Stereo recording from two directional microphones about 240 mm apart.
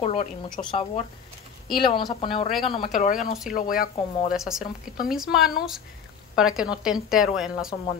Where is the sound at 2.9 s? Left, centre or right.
Left.